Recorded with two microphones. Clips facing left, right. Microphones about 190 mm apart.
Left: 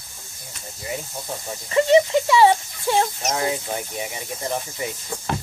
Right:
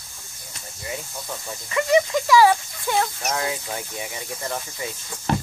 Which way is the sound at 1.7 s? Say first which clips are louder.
Left 4 dB; 30° left (ahead or behind).